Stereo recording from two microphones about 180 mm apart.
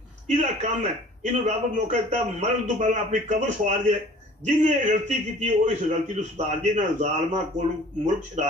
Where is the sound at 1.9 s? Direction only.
40° right (ahead or behind).